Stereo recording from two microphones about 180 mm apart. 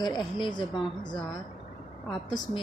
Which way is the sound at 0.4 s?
25° left (ahead or behind).